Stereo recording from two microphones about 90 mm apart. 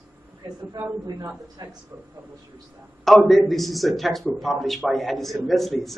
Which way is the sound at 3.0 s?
Centre (ahead or behind).